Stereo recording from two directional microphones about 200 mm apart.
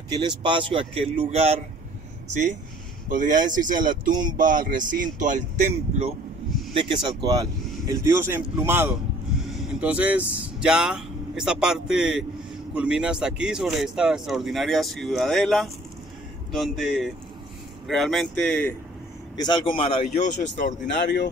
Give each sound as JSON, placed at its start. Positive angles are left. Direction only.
{"t": 0.4, "sound": "speech", "side_deg": -25}
{"t": 19.3, "sound": "speech", "side_deg": 20}